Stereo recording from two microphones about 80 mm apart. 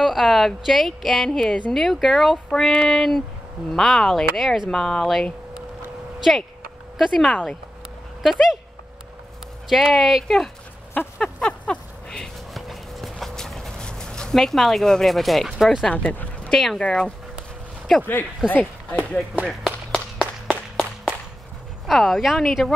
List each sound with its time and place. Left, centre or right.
0.0 s speech: centre
7.0 s speech: centre
9.7 s speech: centre
11.2 s a sound: centre
15.6 s speech: centre
15.9 s speech: left
16.5 s speech: centre
18.5 s speech: centre
19.4 s a sound: centre
21.8 s speech: centre